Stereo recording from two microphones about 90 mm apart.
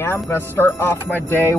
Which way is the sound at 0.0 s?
25° left (ahead or behind).